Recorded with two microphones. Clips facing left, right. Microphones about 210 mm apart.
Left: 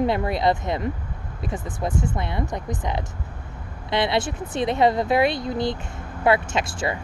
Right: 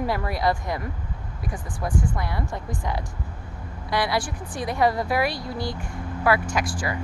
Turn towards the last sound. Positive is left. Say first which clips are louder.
# left 1 dB
turn(degrees=25)  # may be behind; listen again after turning